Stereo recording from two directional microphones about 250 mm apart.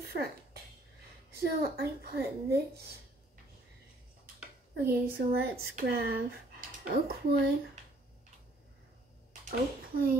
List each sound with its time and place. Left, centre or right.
0.0 s a sound: right
1.3 s a woman's voice: right
4.7 s a woman's voice: right
9.5 s a woman's voice: right